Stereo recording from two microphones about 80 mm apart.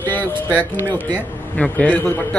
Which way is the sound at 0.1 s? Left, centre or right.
Left.